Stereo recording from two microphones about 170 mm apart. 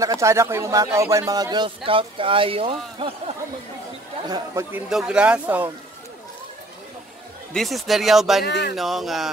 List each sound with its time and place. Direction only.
0.0 s speech: 20° right (ahead or behind)
4.3 s speech: 15° right (ahead or behind)
7.5 s speech: centre (ahead or behind)
8.5 s speech: 80° left
8.7 s speech: centre (ahead or behind)